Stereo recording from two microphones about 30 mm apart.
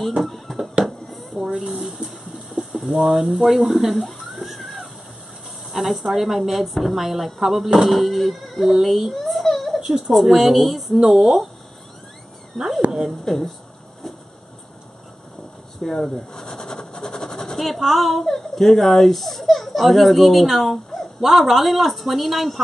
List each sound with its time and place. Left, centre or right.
0.2 s speech: centre
0.8 s a sound: centre
1.4 s speech: centre
9.1 s a sound: centre
10.1 s speech: centre
12.5 s cat: centre
13.2 s speech: centre
15.8 s a sound: centre
17.6 s speech: centre
21.2 s speech: centre